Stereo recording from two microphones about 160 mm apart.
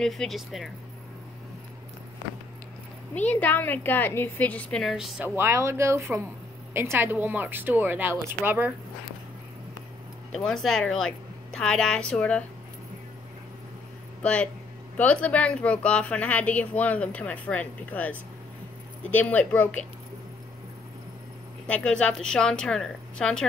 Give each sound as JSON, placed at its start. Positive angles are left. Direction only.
{"t": 0.0, "sound": "a woman's voice", "side_deg": 0}
{"t": 3.2, "sound": "speech", "side_deg": 10}
{"t": 5.2, "sound": "speech", "side_deg": -15}
{"t": 10.3, "sound": "a woman's voice", "side_deg": 0}
{"t": 14.2, "sound": "speech", "side_deg": 5}
{"t": 21.6, "sound": "a woman's voice", "side_deg": 5}